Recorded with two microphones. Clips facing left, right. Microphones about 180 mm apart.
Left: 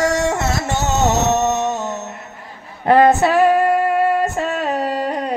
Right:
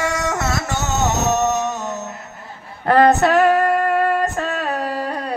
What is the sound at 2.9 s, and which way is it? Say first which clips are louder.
Female singing: left 1 dB; 15° left (ahead or behind).